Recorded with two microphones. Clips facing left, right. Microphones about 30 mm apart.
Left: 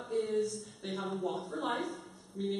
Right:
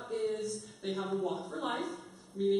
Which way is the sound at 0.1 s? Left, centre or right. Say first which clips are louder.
Left 2 dB; centre.